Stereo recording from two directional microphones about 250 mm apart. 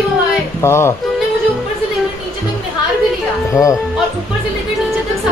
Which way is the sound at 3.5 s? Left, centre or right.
Centre.